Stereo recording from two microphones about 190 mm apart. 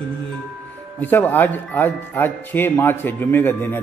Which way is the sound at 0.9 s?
10° left (ahead or behind).